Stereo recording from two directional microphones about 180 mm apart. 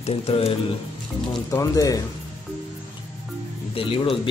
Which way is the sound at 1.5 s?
20° left (ahead or behind).